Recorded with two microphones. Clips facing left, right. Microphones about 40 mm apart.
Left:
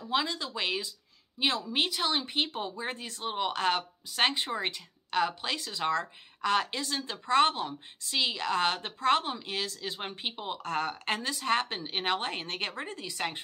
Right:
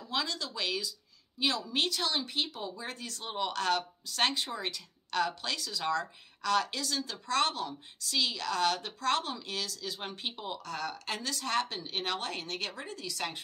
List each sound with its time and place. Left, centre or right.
0.1 s speech: left
1.8 s speech: centre
5.6 s speech: left
10.7 s speech: left
11.2 s speech: left